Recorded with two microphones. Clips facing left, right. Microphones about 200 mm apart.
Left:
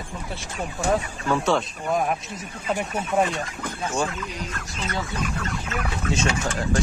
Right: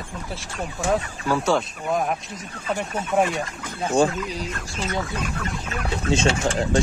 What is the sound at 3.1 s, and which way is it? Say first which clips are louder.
Speech: right 2 dB; centre (ahead or behind).